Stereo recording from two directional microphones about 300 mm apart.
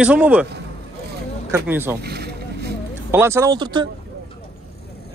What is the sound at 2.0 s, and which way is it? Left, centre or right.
Boat, right.